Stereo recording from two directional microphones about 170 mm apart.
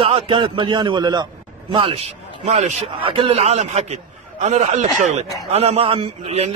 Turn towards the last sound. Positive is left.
turn(degrees=-40)  # may be behind; listen again after turning